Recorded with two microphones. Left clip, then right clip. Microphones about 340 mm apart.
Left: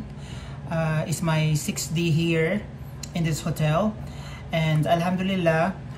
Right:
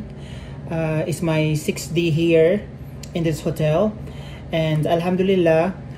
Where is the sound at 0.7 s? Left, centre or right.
Centre.